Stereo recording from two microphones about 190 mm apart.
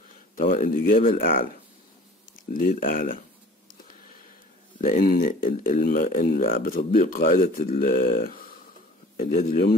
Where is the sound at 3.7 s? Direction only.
45° left (ahead or behind).